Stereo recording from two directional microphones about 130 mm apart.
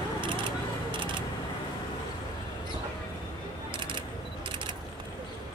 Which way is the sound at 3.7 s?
40° right (ahead or behind).